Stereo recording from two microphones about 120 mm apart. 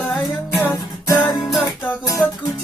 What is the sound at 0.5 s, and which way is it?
Music, 25° left (ahead or behind).